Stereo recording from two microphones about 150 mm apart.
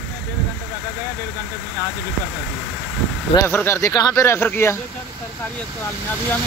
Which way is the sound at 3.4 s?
15° left (ahead or behind).